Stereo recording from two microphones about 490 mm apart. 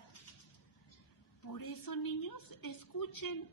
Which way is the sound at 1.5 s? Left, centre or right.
Left.